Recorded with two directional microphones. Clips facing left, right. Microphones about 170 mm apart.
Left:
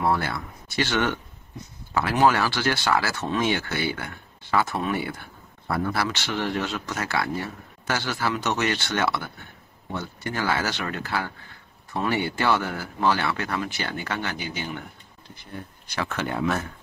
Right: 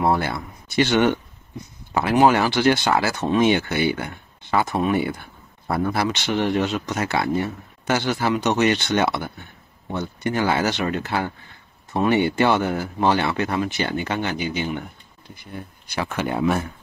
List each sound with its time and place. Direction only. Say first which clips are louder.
0.0 s speech: right 3 dB; 20° right (ahead or behind)
15.9 s speech: right 3 dB; 15° right (ahead or behind)